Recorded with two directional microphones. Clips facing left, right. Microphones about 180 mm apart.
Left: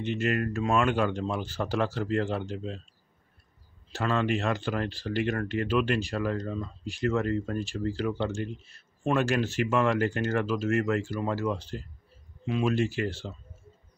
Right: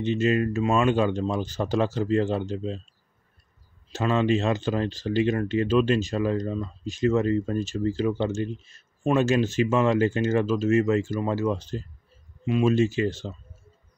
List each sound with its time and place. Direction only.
0.0 s speech: 20° right (ahead or behind)
3.9 s speech: 20° right (ahead or behind)